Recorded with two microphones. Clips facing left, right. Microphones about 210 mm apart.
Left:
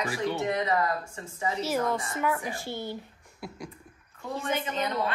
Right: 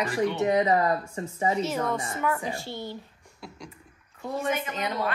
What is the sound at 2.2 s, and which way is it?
Speech, 10° left (ahead or behind).